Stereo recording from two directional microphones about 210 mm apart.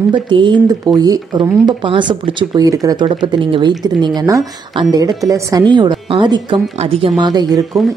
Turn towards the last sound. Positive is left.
turn(degrees=-15)  # may be behind; listen again after turning